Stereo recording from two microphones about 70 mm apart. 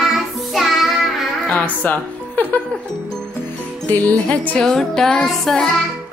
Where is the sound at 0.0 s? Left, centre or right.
Centre.